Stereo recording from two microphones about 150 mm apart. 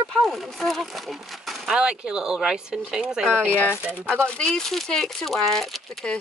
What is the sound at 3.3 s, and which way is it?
Speech, 10° left (ahead or behind).